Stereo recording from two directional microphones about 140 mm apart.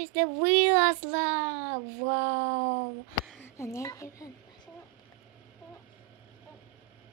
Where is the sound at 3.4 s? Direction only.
20° left (ahead or behind).